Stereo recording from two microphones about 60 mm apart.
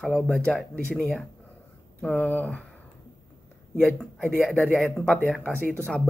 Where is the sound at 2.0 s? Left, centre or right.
Left.